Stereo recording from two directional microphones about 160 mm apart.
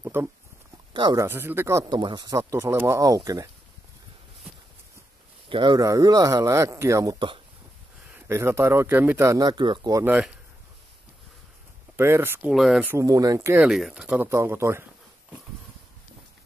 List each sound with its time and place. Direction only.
0.0 s a sound: 15° right (ahead or behind)
0.9 s speech: 30° right (ahead or behind)
1.2 s speech: 15° right (ahead or behind)
2.0 s speech: 30° right (ahead or behind)
5.5 s speech: 30° right (ahead or behind)
8.1 s speech: 15° right (ahead or behind)
10.0 s speech: 10° right (ahead or behind)
12.0 s speech: 15° right (ahead or behind)
12.4 s speech: centre (ahead or behind)
12.8 s speech: 20° right (ahead or behind)
13.7 s speech: centre (ahead or behind)